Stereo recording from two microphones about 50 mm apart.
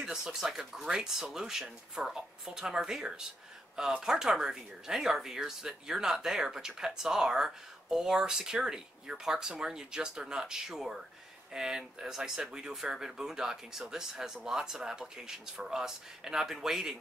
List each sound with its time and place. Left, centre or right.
0.0 s speech: centre